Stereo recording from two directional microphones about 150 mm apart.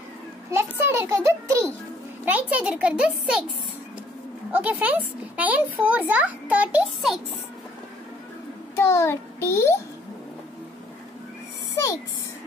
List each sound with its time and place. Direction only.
0.5 s a child's voice: 15° right (ahead or behind)
2.2 s speech: 10° right (ahead or behind)
4.5 s speech: 10° right (ahead or behind)
8.7 s a child's voice: 15° left (ahead or behind)
11.7 s a sound: 20° left (ahead or behind)